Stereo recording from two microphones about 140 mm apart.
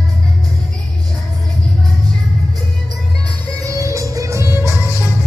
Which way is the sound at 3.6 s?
20° right (ahead or behind).